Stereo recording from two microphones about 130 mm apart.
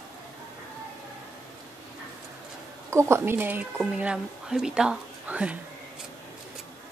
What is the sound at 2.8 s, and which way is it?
A woman's voice, 20° right (ahead or behind).